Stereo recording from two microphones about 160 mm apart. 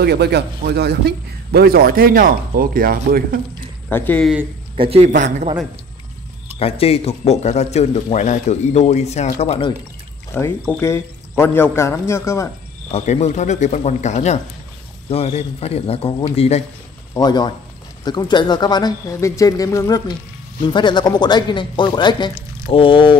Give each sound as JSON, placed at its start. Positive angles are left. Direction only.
{"t": 0.0, "sound": "a man's voice", "side_deg": -90}
{"t": 3.9, "sound": "a man's voice", "side_deg": 10}
{"t": 4.7, "sound": "a man's voice", "side_deg": -35}
{"t": 6.6, "sound": "a man's voice", "side_deg": 35}
{"t": 10.3, "sound": "a man's voice", "side_deg": 15}
{"t": 12.9, "sound": "a man's voice", "side_deg": 45}
{"t": 17.1, "sound": "a man's voice", "side_deg": 25}